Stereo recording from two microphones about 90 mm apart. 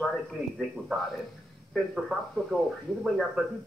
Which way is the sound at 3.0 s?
5° right (ahead or behind).